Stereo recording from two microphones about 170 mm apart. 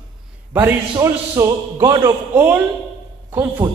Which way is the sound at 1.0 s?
15° right (ahead or behind).